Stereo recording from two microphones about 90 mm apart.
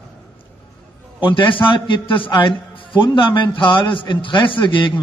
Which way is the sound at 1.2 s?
70° left (ahead or behind).